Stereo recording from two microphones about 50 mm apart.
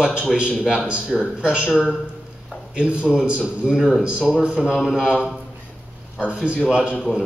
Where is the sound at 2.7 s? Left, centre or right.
Right.